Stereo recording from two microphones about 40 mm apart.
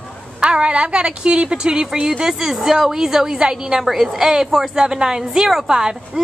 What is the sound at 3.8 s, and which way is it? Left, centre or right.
Speech, centre.